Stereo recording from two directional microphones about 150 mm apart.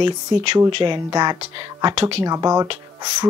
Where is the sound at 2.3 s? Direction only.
25° right (ahead or behind).